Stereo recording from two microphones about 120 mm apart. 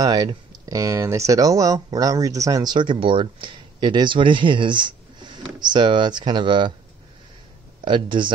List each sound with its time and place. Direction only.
0.0 s speech: 35° right (ahead or behind)
7.8 s speech: 40° right (ahead or behind)